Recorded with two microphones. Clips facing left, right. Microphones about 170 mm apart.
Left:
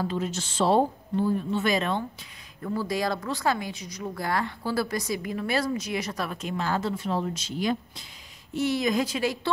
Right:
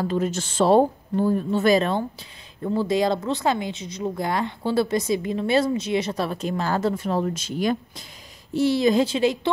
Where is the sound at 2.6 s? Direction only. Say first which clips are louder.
Right 6 dB; 25° right (ahead or behind); by 8.0 s 50° right (ahead or behind).